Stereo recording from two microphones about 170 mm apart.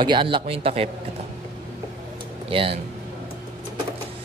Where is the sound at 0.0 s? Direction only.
30° right (ahead or behind).